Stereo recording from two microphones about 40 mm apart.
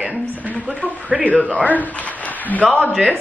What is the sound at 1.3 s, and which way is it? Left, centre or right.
Speech, left.